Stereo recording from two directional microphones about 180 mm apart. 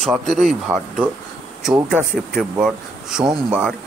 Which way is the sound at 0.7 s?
10° right (ahead or behind).